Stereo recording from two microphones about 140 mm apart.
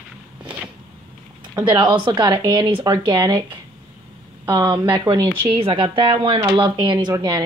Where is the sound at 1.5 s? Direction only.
35° right (ahead or behind).